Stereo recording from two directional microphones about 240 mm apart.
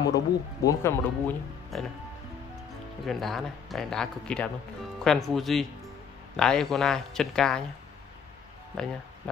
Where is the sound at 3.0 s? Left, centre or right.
Centre.